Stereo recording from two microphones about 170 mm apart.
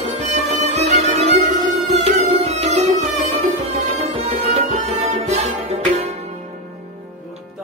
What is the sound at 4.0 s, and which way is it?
Music, 40° right (ahead or behind).